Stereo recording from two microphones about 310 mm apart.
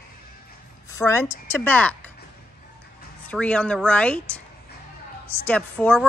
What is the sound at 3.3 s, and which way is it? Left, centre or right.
Speech, centre.